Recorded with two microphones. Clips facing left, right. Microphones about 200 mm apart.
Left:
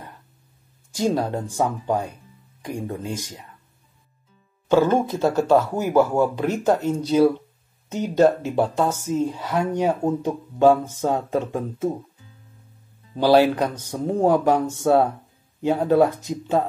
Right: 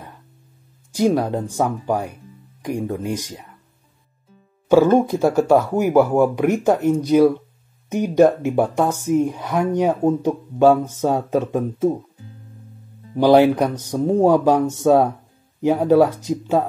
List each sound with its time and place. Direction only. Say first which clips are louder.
0.9 s a woman's voice: right 4 dB; 15° right (ahead or behind)
4.6 s a woman's voice: right 4 dB; 10° right (ahead or behind)
13.1 s a woman's voice: right 3 dB; 15° right (ahead or behind)